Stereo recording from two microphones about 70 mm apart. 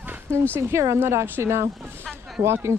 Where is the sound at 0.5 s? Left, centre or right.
Right.